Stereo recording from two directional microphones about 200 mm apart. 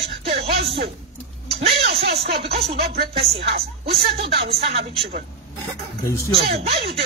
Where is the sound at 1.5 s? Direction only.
30° right (ahead or behind).